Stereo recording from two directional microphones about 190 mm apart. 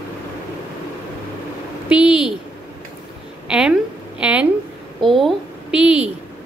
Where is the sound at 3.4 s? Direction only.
5° right (ahead or behind).